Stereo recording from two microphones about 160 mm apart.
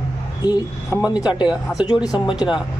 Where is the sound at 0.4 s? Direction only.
25° left (ahead or behind).